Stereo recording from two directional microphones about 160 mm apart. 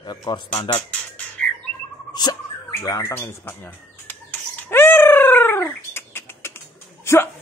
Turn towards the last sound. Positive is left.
turn(degrees=15)  # may be behind; listen again after turning